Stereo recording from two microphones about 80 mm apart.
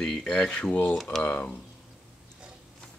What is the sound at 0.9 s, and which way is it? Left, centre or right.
Speech, centre.